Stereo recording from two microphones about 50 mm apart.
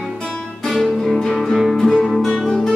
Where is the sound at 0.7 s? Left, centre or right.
Centre.